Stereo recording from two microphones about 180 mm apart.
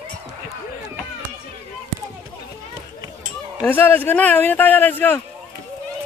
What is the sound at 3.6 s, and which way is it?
Speech, 10° left (ahead or behind).